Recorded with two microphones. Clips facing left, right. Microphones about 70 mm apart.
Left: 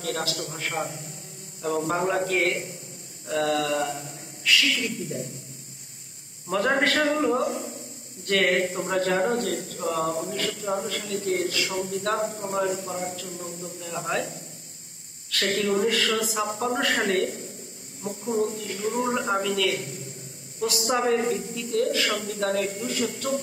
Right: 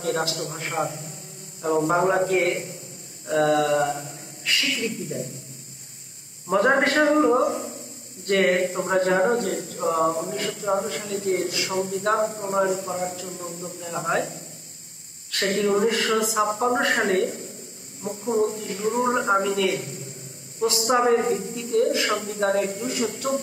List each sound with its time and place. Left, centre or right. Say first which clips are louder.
0.0 s a man's voice: right 4 dB; right
6.5 s speech: right 4 dB; right
15.3 s a man's voice: right 2 dB; right
20.9 s speech: right 4 dB; right